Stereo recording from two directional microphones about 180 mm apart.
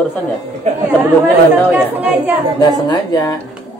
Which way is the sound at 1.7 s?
10° right (ahead or behind).